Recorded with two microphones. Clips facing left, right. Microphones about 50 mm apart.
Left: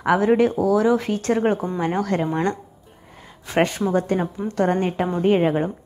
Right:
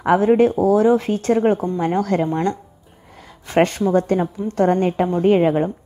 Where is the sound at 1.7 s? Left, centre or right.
Left.